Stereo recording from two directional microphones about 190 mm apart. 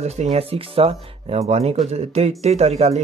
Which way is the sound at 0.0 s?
35° right (ahead or behind).